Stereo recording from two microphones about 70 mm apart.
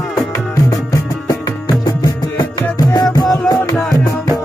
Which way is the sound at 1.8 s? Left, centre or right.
Left.